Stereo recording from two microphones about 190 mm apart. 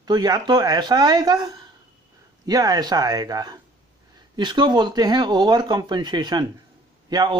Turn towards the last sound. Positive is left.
turn(degrees=-20)  # may be behind; listen again after turning